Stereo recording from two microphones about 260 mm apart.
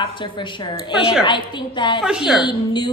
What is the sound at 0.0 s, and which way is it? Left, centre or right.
A woman's voice, centre.